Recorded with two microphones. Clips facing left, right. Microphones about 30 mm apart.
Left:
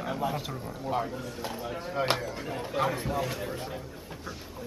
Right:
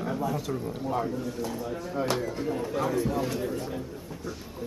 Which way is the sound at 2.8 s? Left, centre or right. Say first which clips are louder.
Right 1 dB; left.